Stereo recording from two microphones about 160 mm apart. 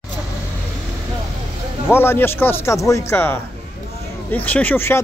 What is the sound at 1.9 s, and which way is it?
Speech, 15° left (ahead or behind).